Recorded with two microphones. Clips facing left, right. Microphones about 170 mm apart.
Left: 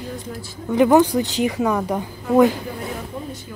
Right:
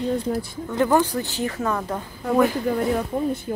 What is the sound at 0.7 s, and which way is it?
A woman's voice, 15° left (ahead or behind).